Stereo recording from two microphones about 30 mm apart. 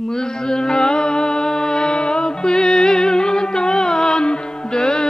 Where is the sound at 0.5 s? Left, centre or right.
Left.